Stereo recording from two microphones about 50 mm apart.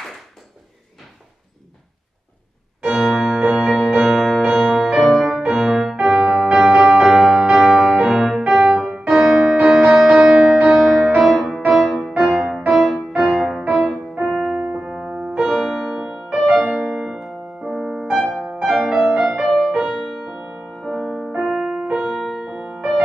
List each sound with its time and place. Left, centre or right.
2.8 s music: centre
12.1 s music: right
12.4 s music: centre
15.3 s music: centre
15.9 s music: centre
17.6 s music: centre
18.1 s music: centre
18.9 s music: centre
21.7 s music: centre